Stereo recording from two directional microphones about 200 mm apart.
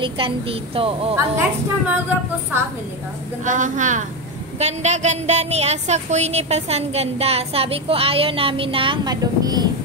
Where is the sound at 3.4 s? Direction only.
40° right (ahead or behind); by 9.6 s 20° right (ahead or behind).